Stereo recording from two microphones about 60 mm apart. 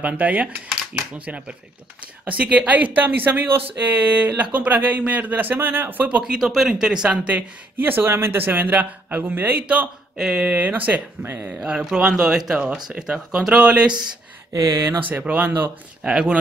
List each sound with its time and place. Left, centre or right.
0.0 s speech: right
6.2 s speech: centre; by 9.8 s right
10.1 s speech: centre; by 11.4 s right
11.4 s speech: centre
14.5 s speech: right
15.0 s speech: right
16.0 s speech: centre